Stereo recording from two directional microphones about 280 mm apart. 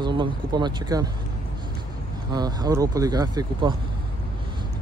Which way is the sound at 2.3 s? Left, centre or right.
Centre.